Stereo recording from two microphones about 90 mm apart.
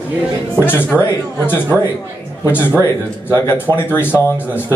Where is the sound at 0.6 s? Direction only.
25° left (ahead or behind).